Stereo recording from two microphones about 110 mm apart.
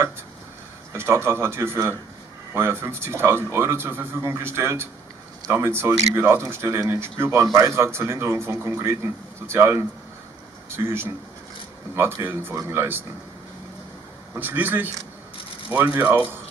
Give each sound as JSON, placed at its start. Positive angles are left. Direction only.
{"t": 0.9, "sound": "speech", "side_deg": -20}
{"t": 14.3, "sound": "speech", "side_deg": -15}